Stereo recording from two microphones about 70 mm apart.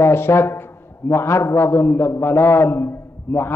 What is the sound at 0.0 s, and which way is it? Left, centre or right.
A man's voice, left.